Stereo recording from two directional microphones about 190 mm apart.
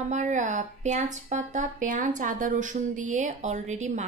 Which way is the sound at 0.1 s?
40° right (ahead or behind).